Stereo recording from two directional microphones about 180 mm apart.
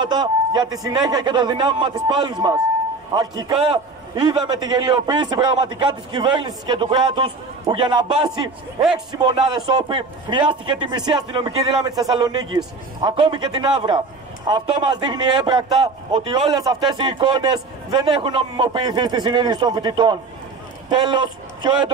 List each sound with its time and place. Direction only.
0.0 s a man's voice: 25° right (ahead or behind)